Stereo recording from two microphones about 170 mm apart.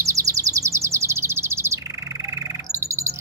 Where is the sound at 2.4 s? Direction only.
20° right (ahead or behind).